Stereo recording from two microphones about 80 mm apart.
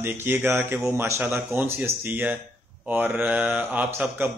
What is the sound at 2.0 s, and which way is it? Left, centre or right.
Mantra, right.